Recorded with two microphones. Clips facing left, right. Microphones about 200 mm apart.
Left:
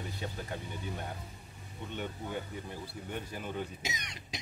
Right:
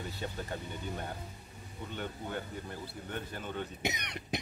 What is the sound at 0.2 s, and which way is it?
Speech, centre (ahead or behind).